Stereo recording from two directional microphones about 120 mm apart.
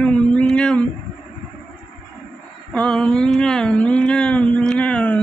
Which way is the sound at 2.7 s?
5° left (ahead or behind).